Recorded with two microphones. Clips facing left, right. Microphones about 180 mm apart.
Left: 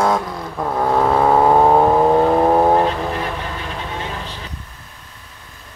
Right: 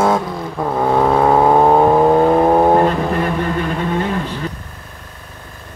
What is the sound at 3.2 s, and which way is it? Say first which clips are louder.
Vehicle: right 7 dB; 50° right (ahead or behind).